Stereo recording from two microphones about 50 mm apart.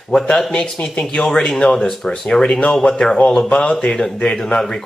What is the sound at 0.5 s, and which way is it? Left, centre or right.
Speech, centre.